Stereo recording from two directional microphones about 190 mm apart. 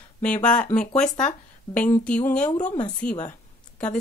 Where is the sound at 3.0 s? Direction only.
45° left (ahead or behind).